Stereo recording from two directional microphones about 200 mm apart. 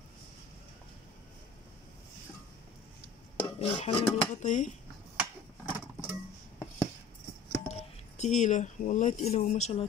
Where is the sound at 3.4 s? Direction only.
30° left (ahead or behind).